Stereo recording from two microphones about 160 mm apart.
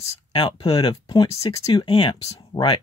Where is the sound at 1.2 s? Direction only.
20° left (ahead or behind).